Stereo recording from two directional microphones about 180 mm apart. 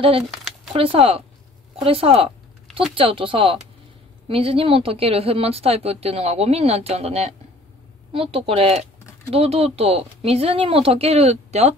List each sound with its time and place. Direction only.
0.7 s a woman's voice: 30° right (ahead or behind)